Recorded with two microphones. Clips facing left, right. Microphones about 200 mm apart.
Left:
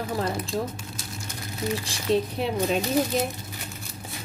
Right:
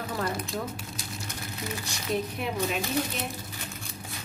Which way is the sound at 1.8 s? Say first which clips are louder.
Left 5 dB; 30° left (ahead or behind).